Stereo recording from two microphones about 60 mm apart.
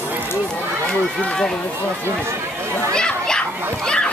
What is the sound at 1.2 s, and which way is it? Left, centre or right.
Speech, centre.